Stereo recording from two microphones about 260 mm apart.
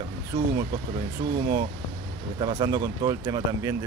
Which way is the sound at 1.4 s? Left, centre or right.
Centre.